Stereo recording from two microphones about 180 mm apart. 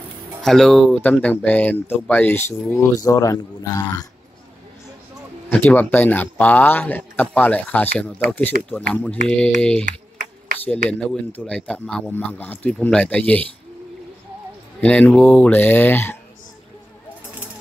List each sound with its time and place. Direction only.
0.4 s speech: centre (ahead or behind); by 4.1 s 20° left (ahead or behind)
5.5 s speech: 10° left (ahead or behind)
9.8 s a sound: 50° right (ahead or behind)
10.9 s speech: 5° left (ahead or behind)
14.8 s speech: 5° left (ahead or behind)